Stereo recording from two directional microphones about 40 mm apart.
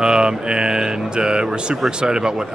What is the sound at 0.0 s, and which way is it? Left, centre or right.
Speech, right.